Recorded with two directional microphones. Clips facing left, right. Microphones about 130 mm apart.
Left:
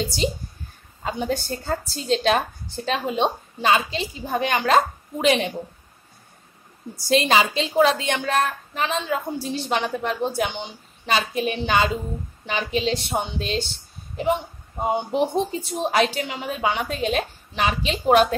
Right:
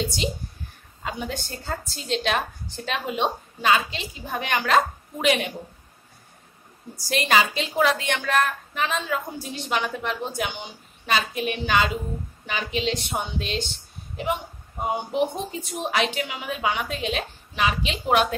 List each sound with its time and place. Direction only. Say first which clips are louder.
1.0 s a woman's voice: left 6 dB; 35° left (ahead or behind)
7.1 s a woman's voice: left 3 dB; 25° left (ahead or behind)
15.3 s a woman's voice: left 7 dB; 30° left (ahead or behind)